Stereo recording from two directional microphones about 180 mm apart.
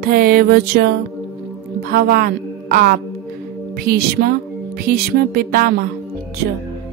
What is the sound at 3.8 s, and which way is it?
Music, 60° right (ahead or behind).